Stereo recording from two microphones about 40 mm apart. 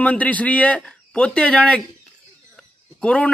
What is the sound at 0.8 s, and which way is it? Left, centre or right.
Speech, left.